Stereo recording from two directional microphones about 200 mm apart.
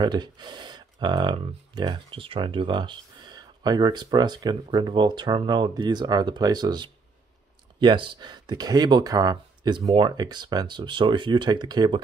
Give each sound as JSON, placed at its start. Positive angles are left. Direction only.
{"t": 0.0, "sound": "speech", "side_deg": -20}